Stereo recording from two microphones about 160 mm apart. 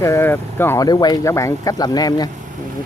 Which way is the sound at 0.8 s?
25° left (ahead or behind).